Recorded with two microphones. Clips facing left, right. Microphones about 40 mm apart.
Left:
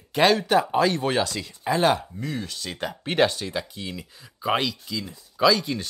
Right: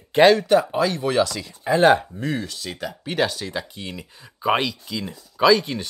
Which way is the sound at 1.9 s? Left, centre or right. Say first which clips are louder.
Right 5 dB; right.